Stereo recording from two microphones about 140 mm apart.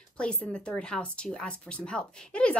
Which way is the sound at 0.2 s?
5° left (ahead or behind).